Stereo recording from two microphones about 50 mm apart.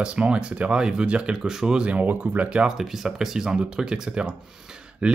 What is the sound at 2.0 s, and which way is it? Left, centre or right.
Speech, right.